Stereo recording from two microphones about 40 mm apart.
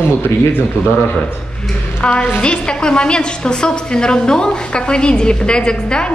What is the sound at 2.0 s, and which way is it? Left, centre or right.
A woman's voice, left.